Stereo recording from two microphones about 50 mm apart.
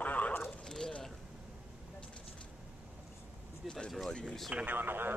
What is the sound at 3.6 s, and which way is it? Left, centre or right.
Speech, centre.